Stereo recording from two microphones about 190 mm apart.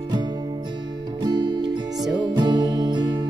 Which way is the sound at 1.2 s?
20° right (ahead or behind).